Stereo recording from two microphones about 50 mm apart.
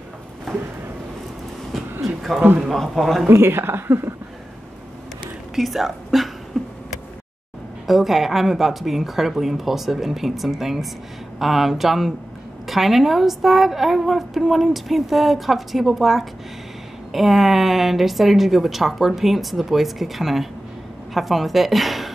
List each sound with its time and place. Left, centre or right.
2.0 s a woman's voice: centre
3.3 s a woman's voice: right
5.6 s speech: centre
7.8 s a woman's voice: centre